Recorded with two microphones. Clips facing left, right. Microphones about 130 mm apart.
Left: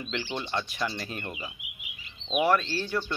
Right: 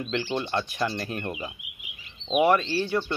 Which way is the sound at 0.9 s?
50° right (ahead or behind).